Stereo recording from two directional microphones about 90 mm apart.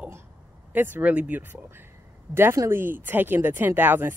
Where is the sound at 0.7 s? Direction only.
20° right (ahead or behind).